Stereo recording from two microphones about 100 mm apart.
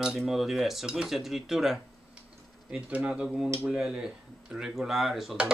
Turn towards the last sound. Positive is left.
turn(degrees=0)  # may be behind; listen again after turning